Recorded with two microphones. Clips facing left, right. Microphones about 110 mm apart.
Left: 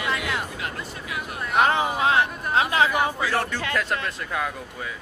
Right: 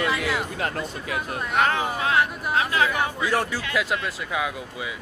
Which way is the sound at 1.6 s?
20° left (ahead or behind).